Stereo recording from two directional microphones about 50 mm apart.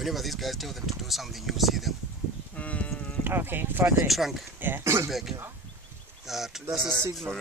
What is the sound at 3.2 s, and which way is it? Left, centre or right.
Speech, right.